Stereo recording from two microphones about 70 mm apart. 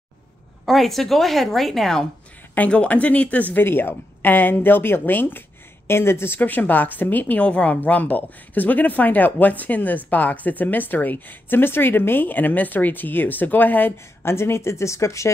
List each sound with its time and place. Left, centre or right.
0.7 s a woman's voice: centre
2.5 s a woman's voice: centre; by 15.3 s left